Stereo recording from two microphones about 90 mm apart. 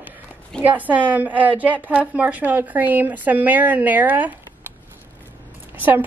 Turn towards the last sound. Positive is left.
turn(degrees=-20)  # may be behind; listen again after turning